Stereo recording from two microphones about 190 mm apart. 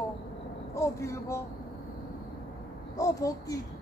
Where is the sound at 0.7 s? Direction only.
15° left (ahead or behind).